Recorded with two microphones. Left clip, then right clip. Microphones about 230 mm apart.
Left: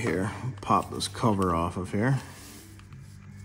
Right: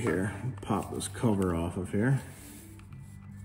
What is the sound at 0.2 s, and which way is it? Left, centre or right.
Speech, left.